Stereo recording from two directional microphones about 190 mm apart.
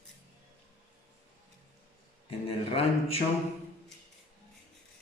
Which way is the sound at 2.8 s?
30° left (ahead or behind).